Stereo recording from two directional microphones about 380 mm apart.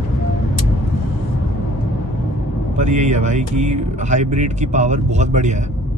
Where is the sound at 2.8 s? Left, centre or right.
Centre.